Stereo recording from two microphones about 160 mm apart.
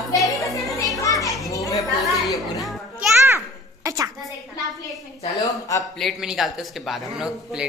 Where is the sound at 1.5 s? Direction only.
20° left (ahead or behind).